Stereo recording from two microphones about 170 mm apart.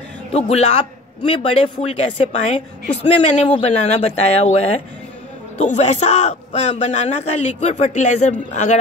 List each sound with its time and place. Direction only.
0.3 s a man's voice: 35° left (ahead or behind)